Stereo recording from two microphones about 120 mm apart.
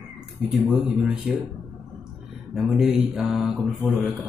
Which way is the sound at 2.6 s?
5° right (ahead or behind).